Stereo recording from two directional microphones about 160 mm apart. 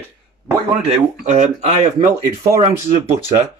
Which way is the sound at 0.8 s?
45° right (ahead or behind).